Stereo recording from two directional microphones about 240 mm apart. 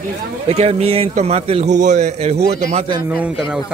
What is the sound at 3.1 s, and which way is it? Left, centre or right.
Speech, centre.